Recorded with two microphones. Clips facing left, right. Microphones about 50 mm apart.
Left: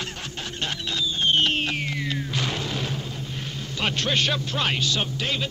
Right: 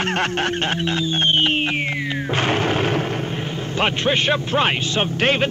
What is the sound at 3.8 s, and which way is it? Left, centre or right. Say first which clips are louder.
Music: right 5 dB; right.